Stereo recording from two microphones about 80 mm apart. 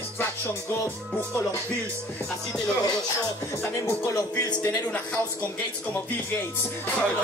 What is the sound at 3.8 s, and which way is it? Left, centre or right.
Speech, left.